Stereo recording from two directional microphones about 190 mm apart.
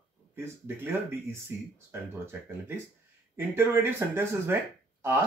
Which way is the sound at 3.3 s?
10° right (ahead or behind).